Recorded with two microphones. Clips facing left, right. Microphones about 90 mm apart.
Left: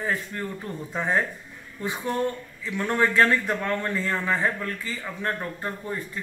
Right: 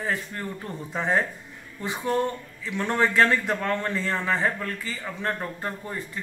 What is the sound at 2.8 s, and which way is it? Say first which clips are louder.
Speech: even; 20° right (ahead or behind).